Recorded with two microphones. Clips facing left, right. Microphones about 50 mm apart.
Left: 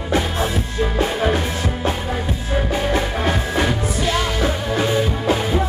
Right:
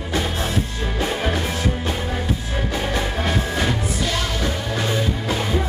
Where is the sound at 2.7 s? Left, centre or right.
Centre.